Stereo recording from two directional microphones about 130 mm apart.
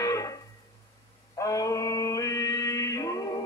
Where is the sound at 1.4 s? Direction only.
25° left (ahead or behind).